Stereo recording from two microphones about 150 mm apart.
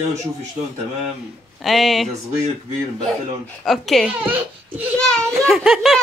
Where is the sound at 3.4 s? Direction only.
Centre (ahead or behind).